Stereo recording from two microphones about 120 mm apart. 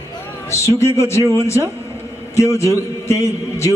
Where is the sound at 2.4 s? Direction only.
25° left (ahead or behind).